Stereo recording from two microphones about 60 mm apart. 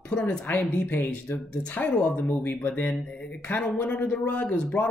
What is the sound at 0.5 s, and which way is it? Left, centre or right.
Speech, left.